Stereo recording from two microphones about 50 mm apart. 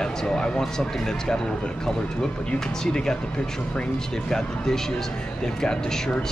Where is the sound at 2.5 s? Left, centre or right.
Centre.